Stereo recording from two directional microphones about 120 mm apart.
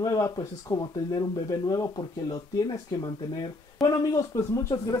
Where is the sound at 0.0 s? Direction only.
30° left (ahead or behind).